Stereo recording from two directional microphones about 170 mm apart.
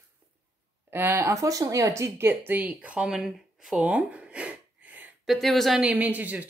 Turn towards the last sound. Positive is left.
turn(degrees=-10)  # may be behind; listen again after turning